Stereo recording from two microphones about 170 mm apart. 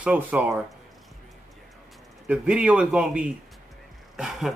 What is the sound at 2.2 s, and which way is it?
Speech, 5° right (ahead or behind).